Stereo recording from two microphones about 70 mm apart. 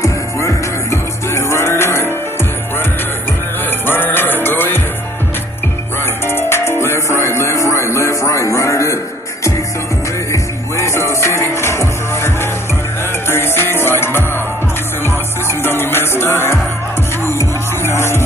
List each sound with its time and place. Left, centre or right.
0.0 s music: left
3.8 s music: left
6.2 s music: left